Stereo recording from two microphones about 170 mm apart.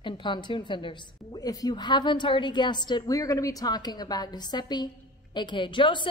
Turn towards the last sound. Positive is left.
turn(degrees=30)  # may be behind; listen again after turning